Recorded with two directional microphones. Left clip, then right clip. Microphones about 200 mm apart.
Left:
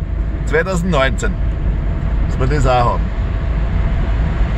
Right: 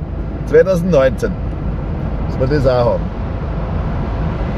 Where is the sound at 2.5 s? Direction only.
10° left (ahead or behind).